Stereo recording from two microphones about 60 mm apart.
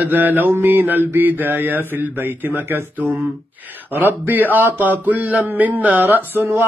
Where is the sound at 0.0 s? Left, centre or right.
Right.